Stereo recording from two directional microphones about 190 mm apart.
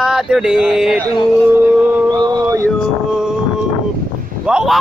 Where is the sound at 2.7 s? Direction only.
Centre (ahead or behind).